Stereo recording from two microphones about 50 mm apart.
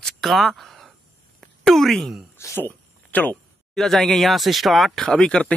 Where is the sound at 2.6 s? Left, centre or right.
Left.